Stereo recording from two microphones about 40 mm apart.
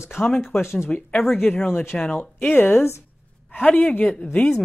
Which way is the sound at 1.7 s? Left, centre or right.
Left.